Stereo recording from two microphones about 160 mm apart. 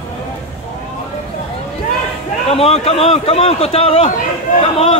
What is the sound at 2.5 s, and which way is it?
A man's voice, 40° left (ahead or behind).